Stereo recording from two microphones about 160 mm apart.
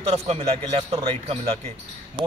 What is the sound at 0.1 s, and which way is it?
Speech, 40° right (ahead or behind).